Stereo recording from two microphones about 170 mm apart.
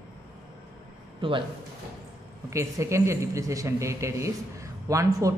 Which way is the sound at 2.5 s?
15° right (ahead or behind).